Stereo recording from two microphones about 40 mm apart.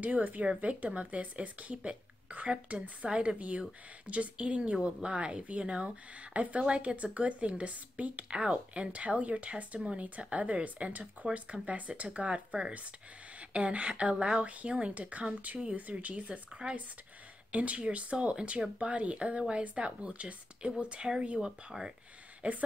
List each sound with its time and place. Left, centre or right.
0.0 s a woman's voice: right
3.1 s speech: right
3.3 s a woman's voice: right
21.7 s speech: centre
22.4 s a woman's voice: right